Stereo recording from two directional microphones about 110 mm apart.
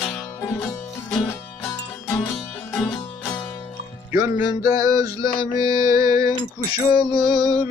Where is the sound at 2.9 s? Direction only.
40° left (ahead or behind).